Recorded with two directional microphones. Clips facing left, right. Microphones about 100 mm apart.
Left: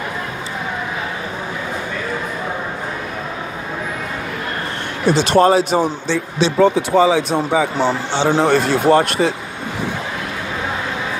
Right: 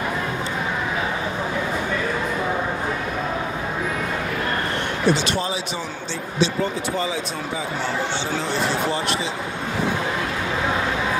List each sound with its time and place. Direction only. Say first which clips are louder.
5.1 s a man's voice: left 11 dB; 40° left (ahead or behind)
6.0 s a man's voice: left 5 dB; 75° left (ahead or behind); by 9.3 s 55° left (ahead or behind)